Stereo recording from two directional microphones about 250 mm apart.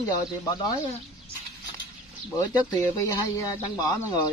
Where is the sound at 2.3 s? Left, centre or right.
Centre.